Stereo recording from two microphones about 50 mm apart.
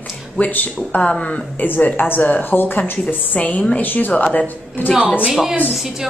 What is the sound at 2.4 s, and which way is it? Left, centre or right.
A woman's voice, left.